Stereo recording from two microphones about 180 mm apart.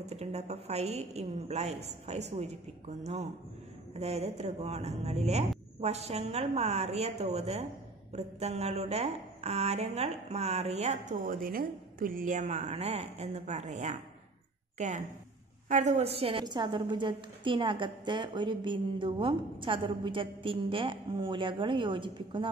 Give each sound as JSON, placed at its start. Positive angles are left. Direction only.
{"t": 0.0, "sound": "a woman's voice", "side_deg": -35}